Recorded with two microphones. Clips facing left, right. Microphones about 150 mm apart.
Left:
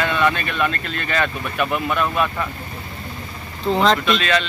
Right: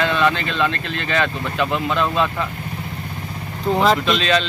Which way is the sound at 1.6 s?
20° right (ahead or behind).